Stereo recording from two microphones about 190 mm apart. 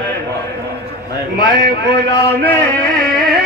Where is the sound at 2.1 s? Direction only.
10° left (ahead or behind).